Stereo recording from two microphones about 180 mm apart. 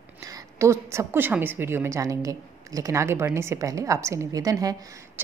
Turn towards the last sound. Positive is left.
turn(degrees=-20)  # may be behind; listen again after turning